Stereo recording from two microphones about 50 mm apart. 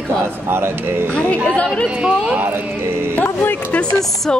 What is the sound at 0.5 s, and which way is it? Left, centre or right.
Speech, right.